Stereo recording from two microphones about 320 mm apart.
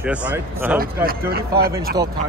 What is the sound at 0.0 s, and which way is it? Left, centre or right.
Speech, centre.